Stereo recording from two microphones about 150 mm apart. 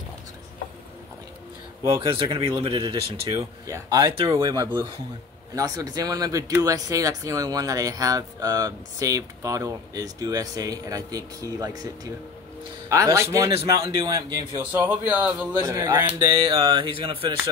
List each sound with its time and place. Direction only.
2.0 s speech: 35° right (ahead or behind)
14.6 s a man's voice: 10° right (ahead or behind)
15.6 s speech: 25° right (ahead or behind)